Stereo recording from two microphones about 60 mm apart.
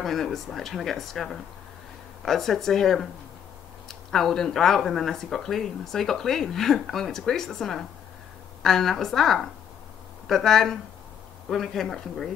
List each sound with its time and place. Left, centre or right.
0.0 s speech: centre
4.1 s speech: centre